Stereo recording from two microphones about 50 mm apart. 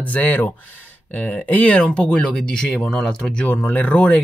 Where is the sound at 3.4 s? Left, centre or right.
Left.